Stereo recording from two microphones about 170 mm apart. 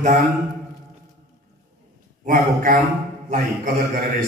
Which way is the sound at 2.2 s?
55° right (ahead or behind).